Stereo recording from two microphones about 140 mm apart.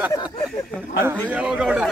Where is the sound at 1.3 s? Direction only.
10° right (ahead or behind).